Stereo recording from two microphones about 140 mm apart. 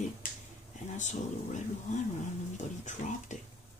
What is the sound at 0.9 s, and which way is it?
Speech, 60° left (ahead or behind).